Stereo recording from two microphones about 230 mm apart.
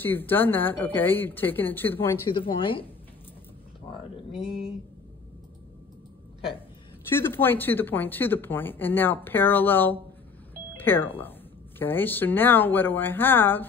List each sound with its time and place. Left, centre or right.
0.0 s speech: centre
2.6 s speech: left
4.4 s speech: centre
7.1 s speech: centre